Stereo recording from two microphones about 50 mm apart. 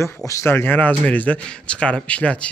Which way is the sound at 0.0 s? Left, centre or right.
Left.